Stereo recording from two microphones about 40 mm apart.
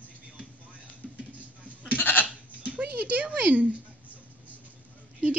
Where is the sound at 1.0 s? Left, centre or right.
Centre.